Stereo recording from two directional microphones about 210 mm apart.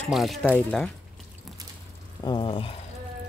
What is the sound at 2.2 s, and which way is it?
Speech, 20° left (ahead or behind).